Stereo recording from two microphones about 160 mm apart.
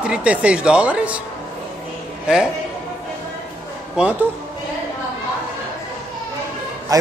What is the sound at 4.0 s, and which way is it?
Speech, 5° right (ahead or behind).